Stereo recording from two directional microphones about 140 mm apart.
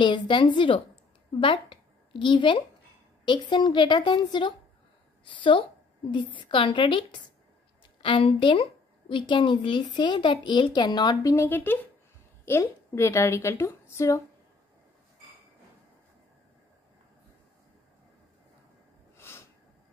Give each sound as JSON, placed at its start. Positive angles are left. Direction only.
{"t": 0.0, "sound": "a woman's voice", "side_deg": 35}
{"t": 11.3, "sound": "a woman's voice", "side_deg": 15}
{"t": 19.1, "sound": "snort", "side_deg": 15}